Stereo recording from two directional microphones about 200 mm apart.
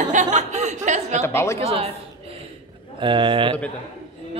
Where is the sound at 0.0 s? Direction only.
40° right (ahead or behind).